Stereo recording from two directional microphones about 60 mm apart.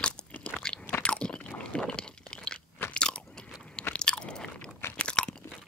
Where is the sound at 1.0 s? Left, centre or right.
Centre.